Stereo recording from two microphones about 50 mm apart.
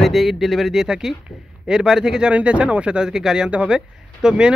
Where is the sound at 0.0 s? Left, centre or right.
Centre.